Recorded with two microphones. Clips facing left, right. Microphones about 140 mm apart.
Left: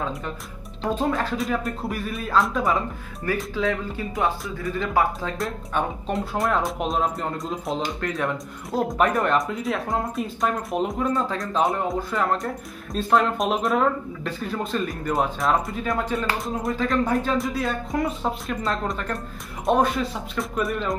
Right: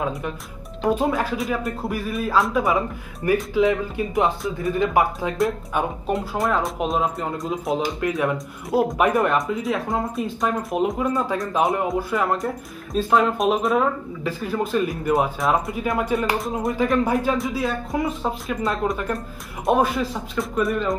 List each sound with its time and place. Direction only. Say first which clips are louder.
0.8 s speech: right 3 dB; 5° right (ahead or behind)
3.5 s speech: right 6 dB; 20° right (ahead or behind)
5.4 s speech: right 5 dB; 5° right (ahead or behind)
16.3 s speech: right 3 dB; centre (ahead or behind)
16.7 s speech: right 2 dB; 10° right (ahead or behind)